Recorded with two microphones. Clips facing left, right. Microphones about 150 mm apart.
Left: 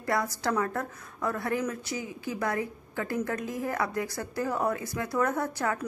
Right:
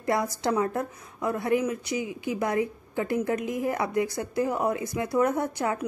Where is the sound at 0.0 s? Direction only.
20° right (ahead or behind).